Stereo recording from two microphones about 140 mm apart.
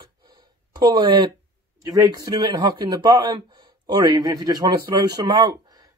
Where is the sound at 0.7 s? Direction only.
30° right (ahead or behind).